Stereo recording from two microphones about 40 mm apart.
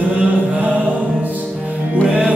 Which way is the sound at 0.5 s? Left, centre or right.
Right.